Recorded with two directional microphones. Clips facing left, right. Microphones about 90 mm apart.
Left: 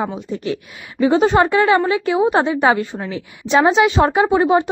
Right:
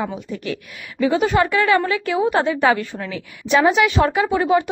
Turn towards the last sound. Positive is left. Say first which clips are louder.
# left 3 dB
turn(degrees=25)  # may be behind; listen again after turning